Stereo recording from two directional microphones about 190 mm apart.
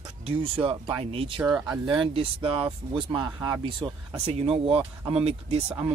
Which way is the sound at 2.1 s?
30° right (ahead or behind).